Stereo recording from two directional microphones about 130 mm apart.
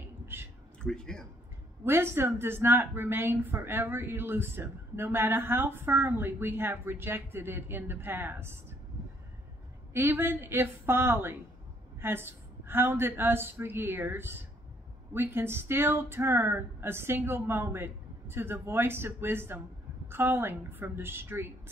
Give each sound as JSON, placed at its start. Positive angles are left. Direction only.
{"t": 0.3, "sound": "a sound", "side_deg": -15}
{"t": 0.8, "sound": "speech", "side_deg": 5}
{"t": 1.9, "sound": "speech", "side_deg": -20}
{"t": 9.9, "sound": "speech", "side_deg": -15}